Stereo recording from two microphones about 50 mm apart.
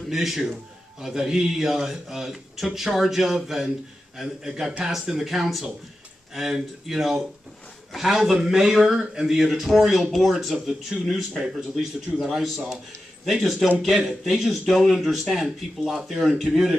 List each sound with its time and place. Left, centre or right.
0.1 s a man's voice: centre
10.9 s a man's voice: centre